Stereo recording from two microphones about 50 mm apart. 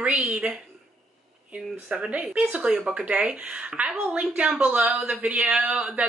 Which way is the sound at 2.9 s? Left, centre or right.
Centre.